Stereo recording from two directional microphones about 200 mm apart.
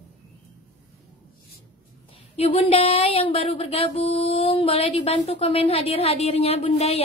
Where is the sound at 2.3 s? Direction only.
30° left (ahead or behind).